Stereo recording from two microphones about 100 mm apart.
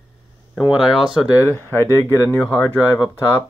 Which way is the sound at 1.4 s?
25° left (ahead or behind).